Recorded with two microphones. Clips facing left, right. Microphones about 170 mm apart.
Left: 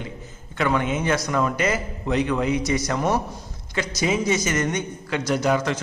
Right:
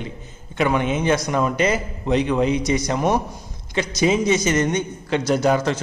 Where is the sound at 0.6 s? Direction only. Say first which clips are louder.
Right 2 dB; 20° right (ahead or behind).